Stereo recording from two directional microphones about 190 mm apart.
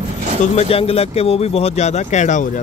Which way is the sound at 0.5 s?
30° left (ahead or behind).